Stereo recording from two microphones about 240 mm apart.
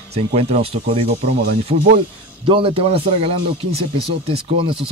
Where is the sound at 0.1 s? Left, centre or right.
Right.